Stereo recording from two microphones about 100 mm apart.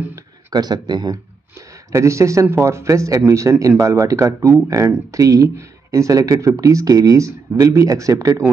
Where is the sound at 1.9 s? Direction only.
30° right (ahead or behind).